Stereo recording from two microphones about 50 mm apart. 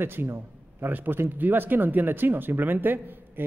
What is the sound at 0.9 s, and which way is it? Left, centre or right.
A man's voice, right.